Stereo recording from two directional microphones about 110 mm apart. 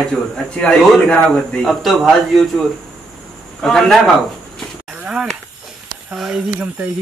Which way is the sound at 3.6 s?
5° left (ahead or behind).